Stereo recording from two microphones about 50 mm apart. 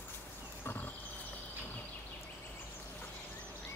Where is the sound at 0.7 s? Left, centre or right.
Left.